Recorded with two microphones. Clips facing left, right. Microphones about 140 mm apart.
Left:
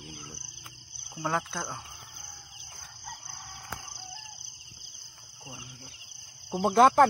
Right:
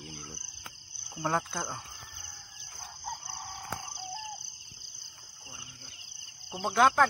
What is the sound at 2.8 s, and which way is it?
Chicken, 40° right (ahead or behind).